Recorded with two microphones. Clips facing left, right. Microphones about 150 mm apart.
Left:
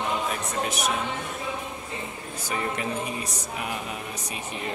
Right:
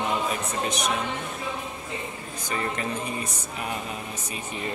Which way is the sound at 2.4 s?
10° left (ahead or behind).